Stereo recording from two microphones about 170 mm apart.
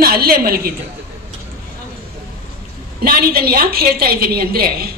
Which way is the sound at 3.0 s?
65° right (ahead or behind).